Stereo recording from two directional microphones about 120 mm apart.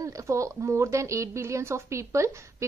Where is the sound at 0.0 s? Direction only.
25° right (ahead or behind).